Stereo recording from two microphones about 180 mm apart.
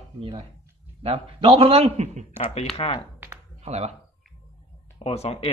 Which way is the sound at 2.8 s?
30° left (ahead or behind).